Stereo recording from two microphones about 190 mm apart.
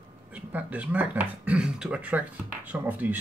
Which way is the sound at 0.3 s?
10° right (ahead or behind).